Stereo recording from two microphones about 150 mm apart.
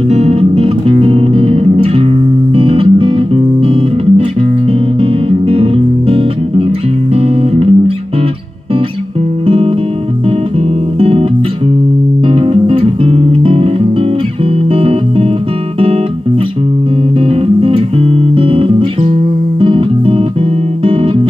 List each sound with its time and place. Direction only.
0.1 s music: 45° right (ahead or behind)
9.5 s music: 40° right (ahead or behind)
11.0 s music: 40° right (ahead or behind)
12.3 s music: 40° right (ahead or behind)
14.7 s music: 40° right (ahead or behind)
17.3 s music: 40° right (ahead or behind)